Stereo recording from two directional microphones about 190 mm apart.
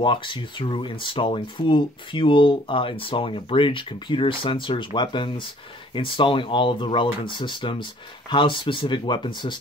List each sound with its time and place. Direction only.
0.0 s speech: 25° left (ahead or behind)